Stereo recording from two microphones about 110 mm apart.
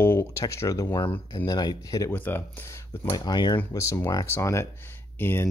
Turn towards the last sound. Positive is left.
turn(degrees=20)  # may be behind; listen again after turning